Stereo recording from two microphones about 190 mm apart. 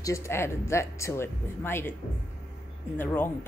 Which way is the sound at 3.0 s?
10° left (ahead or behind).